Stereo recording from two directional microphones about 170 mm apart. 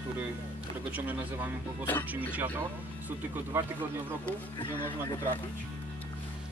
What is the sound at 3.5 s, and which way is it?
Speech, 15° right (ahead or behind).